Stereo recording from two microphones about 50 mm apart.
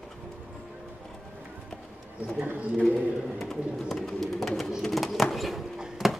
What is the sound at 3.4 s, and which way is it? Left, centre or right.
Speech, centre.